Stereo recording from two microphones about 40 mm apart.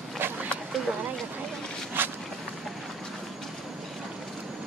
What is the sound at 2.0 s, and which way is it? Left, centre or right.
Walk, right.